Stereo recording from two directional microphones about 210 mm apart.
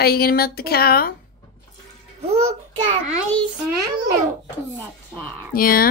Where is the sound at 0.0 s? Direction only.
45° left (ahead or behind).